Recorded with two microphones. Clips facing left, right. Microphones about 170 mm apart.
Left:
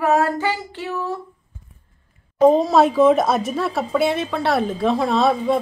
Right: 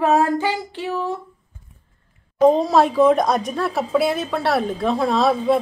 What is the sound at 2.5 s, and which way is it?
A woman's voice, centre (ahead or behind).